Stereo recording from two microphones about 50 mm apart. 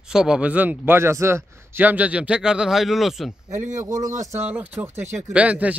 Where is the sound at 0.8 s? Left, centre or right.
Right.